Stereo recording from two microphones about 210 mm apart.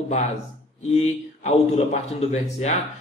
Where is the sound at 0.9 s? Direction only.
30° left (ahead or behind).